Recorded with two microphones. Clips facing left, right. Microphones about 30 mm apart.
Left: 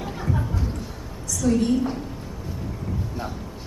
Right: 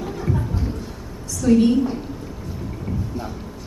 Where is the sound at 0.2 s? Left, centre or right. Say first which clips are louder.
Right 2 dB; centre.